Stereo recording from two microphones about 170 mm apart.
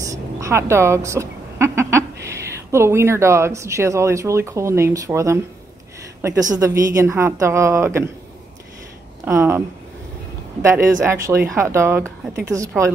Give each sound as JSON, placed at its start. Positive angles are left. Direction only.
{"t": 0.0, "sound": "a woman's voice", "side_deg": -20}
{"t": 6.5, "sound": "a woman's voice", "side_deg": -20}
{"t": 9.2, "sound": "a woman's voice", "side_deg": -15}
{"t": 10.6, "sound": "a woman's voice", "side_deg": -15}